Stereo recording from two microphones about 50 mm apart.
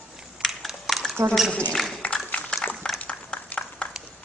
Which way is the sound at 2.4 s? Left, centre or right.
Left.